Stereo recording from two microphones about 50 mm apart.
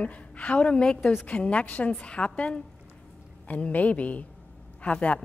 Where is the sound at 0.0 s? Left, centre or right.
Left.